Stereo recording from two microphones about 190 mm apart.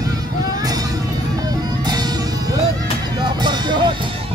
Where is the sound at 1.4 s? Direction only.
20° right (ahead or behind).